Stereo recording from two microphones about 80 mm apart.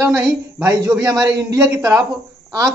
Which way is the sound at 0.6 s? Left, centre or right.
Right.